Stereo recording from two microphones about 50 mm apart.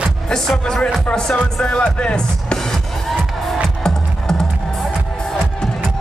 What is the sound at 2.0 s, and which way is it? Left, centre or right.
Speech, centre.